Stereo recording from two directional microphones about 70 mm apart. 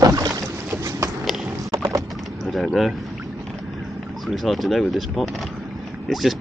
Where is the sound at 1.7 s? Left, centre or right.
Right.